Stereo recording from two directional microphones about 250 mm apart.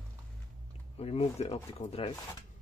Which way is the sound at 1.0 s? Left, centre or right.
Left.